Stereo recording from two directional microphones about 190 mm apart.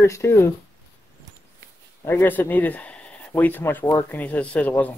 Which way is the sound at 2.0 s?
10° left (ahead or behind).